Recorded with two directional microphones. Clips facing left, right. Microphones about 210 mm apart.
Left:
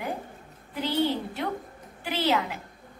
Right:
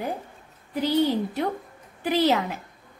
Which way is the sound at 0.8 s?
45° right (ahead or behind).